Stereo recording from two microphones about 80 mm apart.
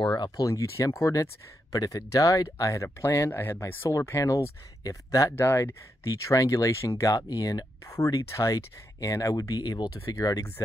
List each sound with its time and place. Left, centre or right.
0.0 s speech: left
0.4 s speech: left
4.8 s speech: left
5.3 s speech: left
6.0 s speech: left
7.2 s speech: left
10.1 s speech: left